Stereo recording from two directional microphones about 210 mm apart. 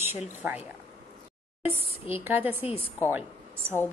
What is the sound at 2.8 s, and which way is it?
Speech, 10° left (ahead or behind).